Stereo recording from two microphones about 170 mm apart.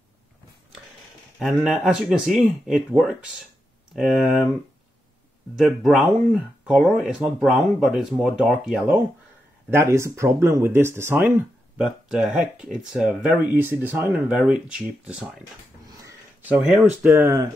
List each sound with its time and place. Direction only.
1.6 s speech: 5° right (ahead or behind)
5.6 s speech: centre (ahead or behind)
16.1 s a sound: 10° right (ahead or behind)
17.0 s speech: 10° right (ahead or behind)